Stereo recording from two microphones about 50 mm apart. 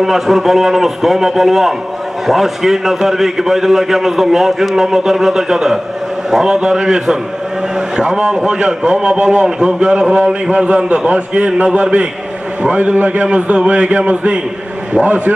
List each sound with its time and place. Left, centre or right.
0.0 s a man's voice: centre; by 15.3 s right